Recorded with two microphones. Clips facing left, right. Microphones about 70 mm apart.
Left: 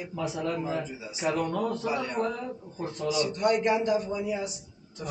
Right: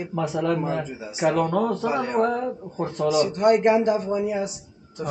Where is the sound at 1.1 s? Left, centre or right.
Right.